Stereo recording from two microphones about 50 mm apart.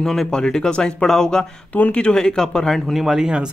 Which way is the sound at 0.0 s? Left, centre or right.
Centre.